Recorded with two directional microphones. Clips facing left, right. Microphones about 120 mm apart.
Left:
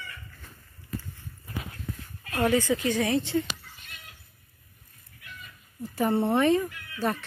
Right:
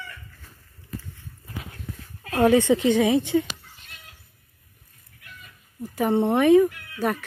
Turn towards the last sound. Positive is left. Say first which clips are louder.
# right 3 dB
turn(degrees=-10)  # may be behind; listen again after turning